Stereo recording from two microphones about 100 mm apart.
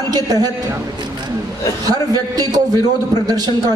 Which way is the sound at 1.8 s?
40° right (ahead or behind).